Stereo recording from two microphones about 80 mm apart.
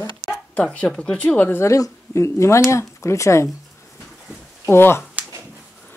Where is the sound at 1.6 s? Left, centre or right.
Left.